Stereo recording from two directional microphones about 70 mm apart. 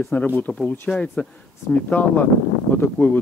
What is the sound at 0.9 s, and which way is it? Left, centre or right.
Speech, centre.